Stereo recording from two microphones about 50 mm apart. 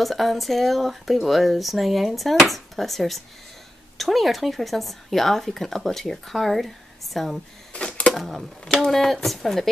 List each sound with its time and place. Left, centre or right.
0.0 s speech: centre
7.7 s a sound: left
8.1 s speech: centre